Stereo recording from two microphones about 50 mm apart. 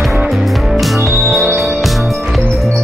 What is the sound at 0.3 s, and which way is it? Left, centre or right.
Music, centre.